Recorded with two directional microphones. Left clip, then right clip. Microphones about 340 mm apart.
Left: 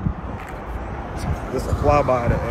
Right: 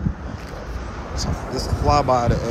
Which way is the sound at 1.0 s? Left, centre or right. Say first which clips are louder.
Right 3 dB; left.